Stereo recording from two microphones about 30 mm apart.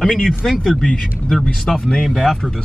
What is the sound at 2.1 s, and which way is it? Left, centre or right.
Speech, centre.